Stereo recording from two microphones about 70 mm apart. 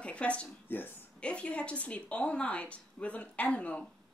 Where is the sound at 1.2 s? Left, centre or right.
Centre.